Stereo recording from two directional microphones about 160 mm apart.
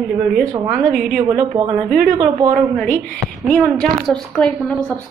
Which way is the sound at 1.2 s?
30° right (ahead or behind).